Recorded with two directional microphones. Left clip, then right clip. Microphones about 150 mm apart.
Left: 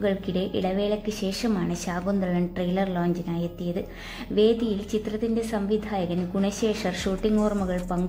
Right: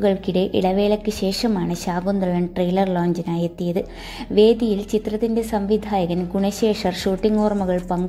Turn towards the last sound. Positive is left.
turn(degrees=-20)  # may be behind; listen again after turning